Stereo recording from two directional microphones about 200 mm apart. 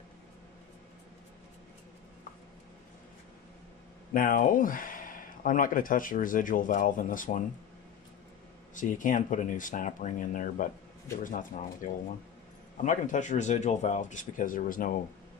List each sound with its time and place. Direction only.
4.1 s speech: 45° left (ahead or behind)
8.7 s speech: 40° left (ahead or behind)